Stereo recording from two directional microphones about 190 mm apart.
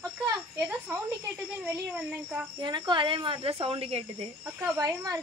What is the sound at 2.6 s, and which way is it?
Speech, 25° right (ahead or behind).